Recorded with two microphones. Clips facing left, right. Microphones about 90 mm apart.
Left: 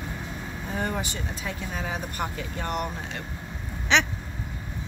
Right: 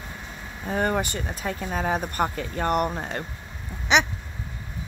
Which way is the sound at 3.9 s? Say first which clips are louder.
Right 2 dB; 15° right (ahead or behind).